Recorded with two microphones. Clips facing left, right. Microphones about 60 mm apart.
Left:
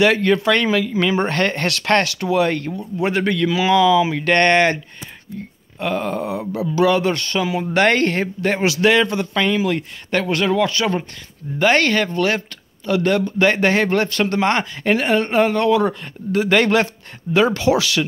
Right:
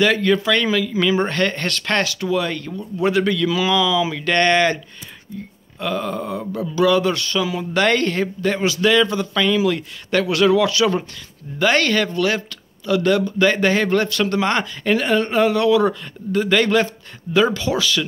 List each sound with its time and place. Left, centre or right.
0.1 s speech: left
0.7 s speech: left
1.2 s speech: left
3.0 s speech: left
5.8 s speech: left
6.2 s speech: centre
6.7 s speech: left
15.9 s speech: left